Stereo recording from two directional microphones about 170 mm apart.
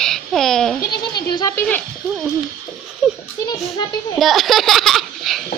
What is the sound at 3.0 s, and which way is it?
Speech, 5° right (ahead or behind).